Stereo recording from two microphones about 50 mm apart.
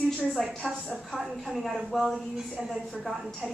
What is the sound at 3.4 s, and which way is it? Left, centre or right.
Speech, centre.